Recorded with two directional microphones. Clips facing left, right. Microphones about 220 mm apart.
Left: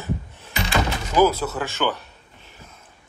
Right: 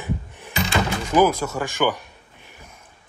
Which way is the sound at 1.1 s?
15° right (ahead or behind).